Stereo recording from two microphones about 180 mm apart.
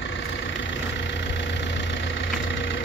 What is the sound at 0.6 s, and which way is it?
Vehicle, 85° left.